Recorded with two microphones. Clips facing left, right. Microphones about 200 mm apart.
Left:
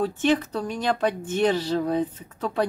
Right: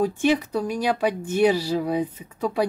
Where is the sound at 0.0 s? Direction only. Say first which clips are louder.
Right 1 dB; 10° right (ahead or behind).